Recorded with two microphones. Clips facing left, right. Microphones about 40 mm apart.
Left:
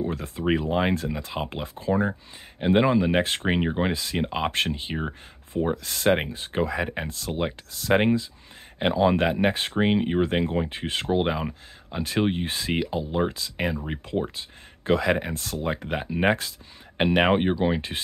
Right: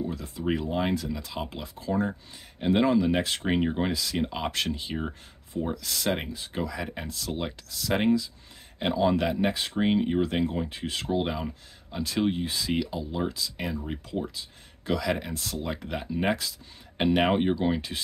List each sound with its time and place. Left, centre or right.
0.0 s speech: left
0.5 s speech: left
3.5 s speech: left
9.8 s speech: left
16.9 s speech: left